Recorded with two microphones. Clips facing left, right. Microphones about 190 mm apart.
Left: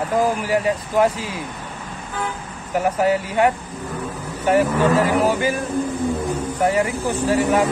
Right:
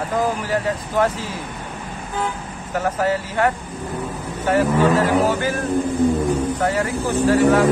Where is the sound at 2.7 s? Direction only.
15° left (ahead or behind).